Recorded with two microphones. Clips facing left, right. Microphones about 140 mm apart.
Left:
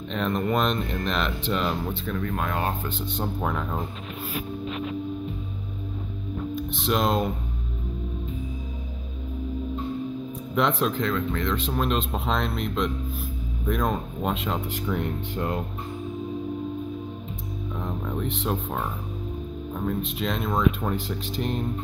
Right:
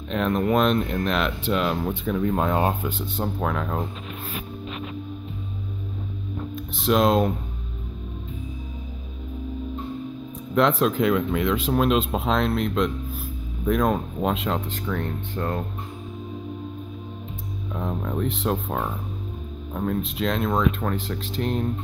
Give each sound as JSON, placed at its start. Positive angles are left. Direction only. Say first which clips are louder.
{"t": 0.1, "sound": "speech", "louder": "right 4 dB", "side_deg": -5}
{"t": 2.0, "sound": "speech", "louder": "right 8 dB", "side_deg": -15}
{"t": 2.8, "sound": "speech", "louder": "right 2 dB", "side_deg": -5}
{"t": 6.5, "sound": "speech", "louder": "right 4 dB", "side_deg": 0}
{"t": 10.5, "sound": "speech", "louder": "right 4 dB", "side_deg": 0}
{"t": 11.1, "sound": "speech", "louder": "right 4 dB", "side_deg": -10}
{"t": 14.7, "sound": "speech", "louder": "left 1 dB", "side_deg": 15}
{"t": 17.7, "sound": "music", "louder": "right 4 dB", "side_deg": -5}
{"t": 19.7, "sound": "speech", "louder": "right 3 dB", "side_deg": 0}